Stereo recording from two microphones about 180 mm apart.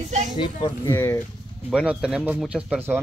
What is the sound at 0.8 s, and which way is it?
Speech, 15° left (ahead or behind).